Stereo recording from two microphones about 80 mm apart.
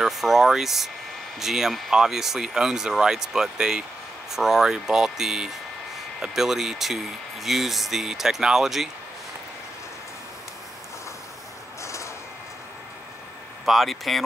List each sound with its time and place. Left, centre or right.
0.0 s speech: centre
11.8 s a sound: left
13.7 s speech: centre